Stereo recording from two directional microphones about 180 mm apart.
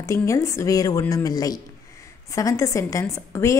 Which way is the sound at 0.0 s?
15° left (ahead or behind).